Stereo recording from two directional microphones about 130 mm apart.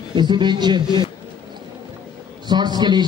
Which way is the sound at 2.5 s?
35° right (ahead or behind).